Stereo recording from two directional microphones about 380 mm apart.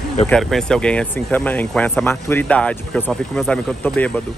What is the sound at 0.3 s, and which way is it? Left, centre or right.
Speech, centre.